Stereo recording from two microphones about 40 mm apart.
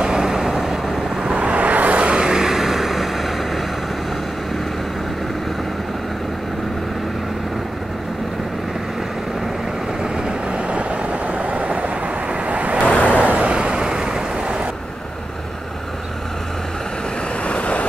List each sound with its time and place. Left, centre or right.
0.0 s vehicle: centre
1.2 s vehicle: right; by 3.6 s centre
10.1 s vehicle: right
12.8 s vehicle: left
13.1 s vehicle: right; by 14.6 s centre
17.5 s vehicle: left